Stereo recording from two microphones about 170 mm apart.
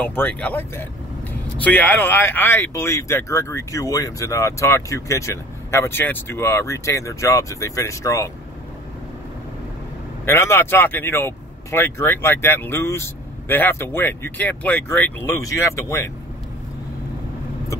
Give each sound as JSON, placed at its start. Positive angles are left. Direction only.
{"t": 0.0, "sound": "speech", "side_deg": 10}
{"t": 10.2, "sound": "speech", "side_deg": 15}